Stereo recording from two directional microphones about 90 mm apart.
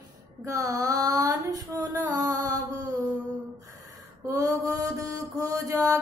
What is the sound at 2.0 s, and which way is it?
Music, 40° right (ahead or behind).